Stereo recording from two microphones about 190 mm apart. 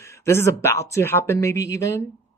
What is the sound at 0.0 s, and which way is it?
Speech, 15° left (ahead or behind).